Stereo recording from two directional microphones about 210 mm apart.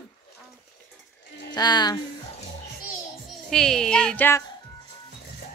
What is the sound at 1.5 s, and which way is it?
Speech, 20° left (ahead or behind).